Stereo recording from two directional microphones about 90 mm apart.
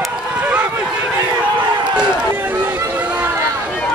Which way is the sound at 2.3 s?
20° right (ahead or behind).